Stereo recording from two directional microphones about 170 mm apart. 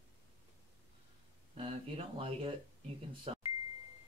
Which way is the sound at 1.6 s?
35° right (ahead or behind).